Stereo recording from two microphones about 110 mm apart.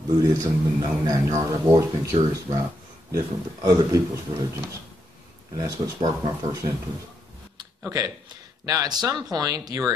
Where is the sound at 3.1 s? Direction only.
30° right (ahead or behind).